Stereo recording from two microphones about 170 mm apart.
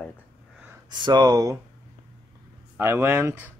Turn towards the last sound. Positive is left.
turn(degrees=-15)  # may be behind; listen again after turning